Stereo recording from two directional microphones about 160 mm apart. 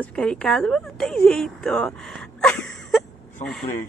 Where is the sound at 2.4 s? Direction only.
5° left (ahead or behind).